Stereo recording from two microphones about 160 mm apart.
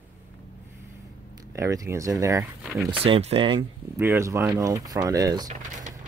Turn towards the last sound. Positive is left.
turn(degrees=-50)  # may be behind; listen again after turning